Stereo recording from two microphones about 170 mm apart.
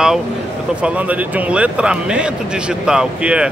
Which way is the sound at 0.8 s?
10° right (ahead or behind).